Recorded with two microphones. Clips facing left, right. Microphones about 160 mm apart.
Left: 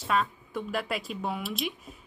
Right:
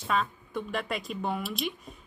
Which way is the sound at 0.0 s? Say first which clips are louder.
Left 1 dB; centre (ahead or behind).